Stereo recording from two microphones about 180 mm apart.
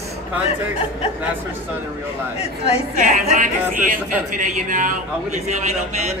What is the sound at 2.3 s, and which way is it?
Speech, 35° left (ahead or behind).